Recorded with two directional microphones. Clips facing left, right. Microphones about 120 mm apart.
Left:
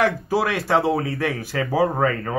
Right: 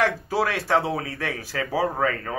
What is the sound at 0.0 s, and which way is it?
Speech, 5° left (ahead or behind).